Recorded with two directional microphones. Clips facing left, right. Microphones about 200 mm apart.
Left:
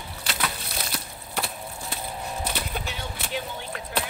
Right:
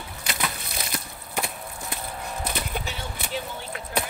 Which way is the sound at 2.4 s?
5° left (ahead or behind).